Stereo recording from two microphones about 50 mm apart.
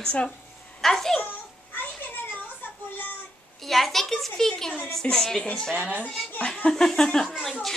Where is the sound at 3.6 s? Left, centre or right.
Centre.